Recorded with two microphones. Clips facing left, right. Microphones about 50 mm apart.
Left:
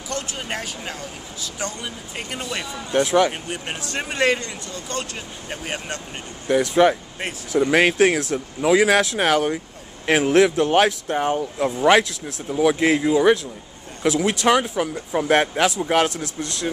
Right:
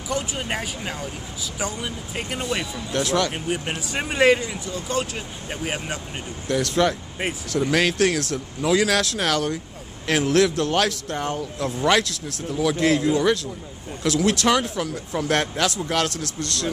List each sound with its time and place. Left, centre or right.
0.1 s speech: centre
3.1 s speech: centre
3.4 s speech: centre
6.4 s speech: centre
12.4 s speech: left
16.3 s speech: centre